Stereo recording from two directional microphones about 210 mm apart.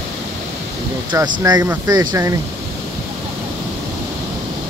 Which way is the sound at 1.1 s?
15° right (ahead or behind).